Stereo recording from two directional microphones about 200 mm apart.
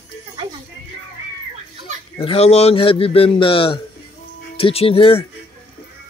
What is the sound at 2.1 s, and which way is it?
A man's voice, 30° left (ahead or behind).